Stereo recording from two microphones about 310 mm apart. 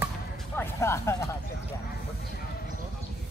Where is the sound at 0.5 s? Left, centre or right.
Centre.